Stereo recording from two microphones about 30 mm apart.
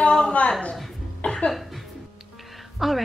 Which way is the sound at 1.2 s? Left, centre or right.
Left.